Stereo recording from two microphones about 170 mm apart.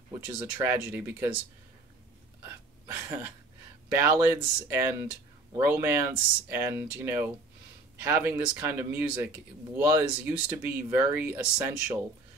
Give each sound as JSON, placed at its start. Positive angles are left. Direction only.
{"t": 0.4, "sound": "speech", "side_deg": -10}
{"t": 2.4, "sound": "hiccup", "side_deg": -15}
{"t": 3.9, "sound": "speech", "side_deg": -15}